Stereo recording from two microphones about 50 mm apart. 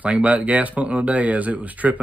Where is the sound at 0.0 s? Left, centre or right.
Right.